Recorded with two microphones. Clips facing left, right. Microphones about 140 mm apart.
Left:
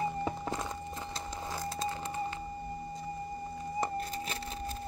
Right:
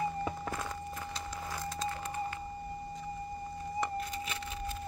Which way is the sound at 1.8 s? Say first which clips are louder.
Even; 25° left (ahead or behind).